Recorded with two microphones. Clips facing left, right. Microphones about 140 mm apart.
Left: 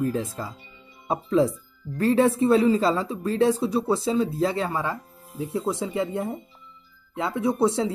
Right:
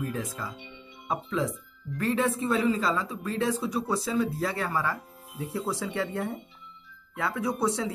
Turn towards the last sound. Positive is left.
turn(degrees=25)  # may be behind; listen again after turning